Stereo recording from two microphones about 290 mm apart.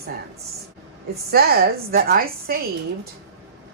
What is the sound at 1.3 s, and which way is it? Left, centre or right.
Speech, right.